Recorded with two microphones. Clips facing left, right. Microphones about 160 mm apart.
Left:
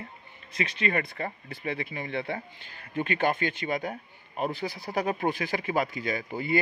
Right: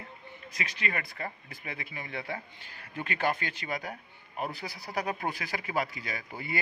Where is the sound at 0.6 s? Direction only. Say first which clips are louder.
Left 7 dB; 25° left (ahead or behind).